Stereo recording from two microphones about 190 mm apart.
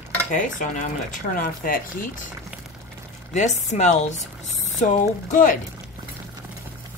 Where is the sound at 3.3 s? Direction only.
40° left (ahead or behind).